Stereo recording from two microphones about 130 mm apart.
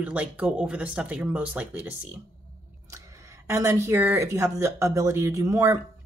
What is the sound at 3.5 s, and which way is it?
Speech, 20° right (ahead or behind).